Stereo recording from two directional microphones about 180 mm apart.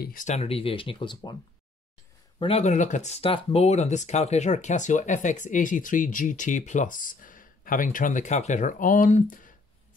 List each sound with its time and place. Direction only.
0.0 s speech: 50° left (ahead or behind); by 1.3 s 25° left (ahead or behind)
2.3 s speech: 30° left (ahead or behind); by 9.6 s 50° left (ahead or behind)